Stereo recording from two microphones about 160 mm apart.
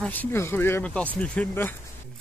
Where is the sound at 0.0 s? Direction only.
10° left (ahead or behind).